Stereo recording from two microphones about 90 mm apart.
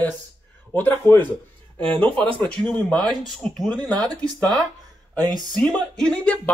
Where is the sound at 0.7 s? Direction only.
20° left (ahead or behind); by 4.6 s 5° left (ahead or behind).